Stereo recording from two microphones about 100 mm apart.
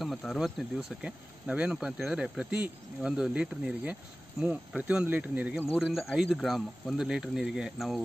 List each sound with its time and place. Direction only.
0.0 s speech: centre (ahead or behind); by 5.5 s 15° right (ahead or behind)
5.8 s speech: centre (ahead or behind)